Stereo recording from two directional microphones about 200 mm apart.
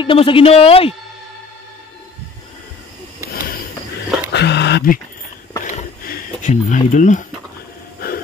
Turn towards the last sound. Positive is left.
turn(degrees=40)  # may be behind; listen again after turning